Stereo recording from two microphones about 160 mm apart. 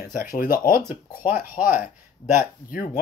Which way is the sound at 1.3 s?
10° right (ahead or behind).